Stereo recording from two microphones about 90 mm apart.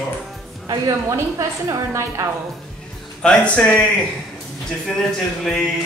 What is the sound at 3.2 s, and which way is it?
Speech, 10° left (ahead or behind).